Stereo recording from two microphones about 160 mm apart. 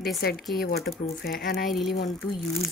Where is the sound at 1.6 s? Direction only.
Centre (ahead or behind).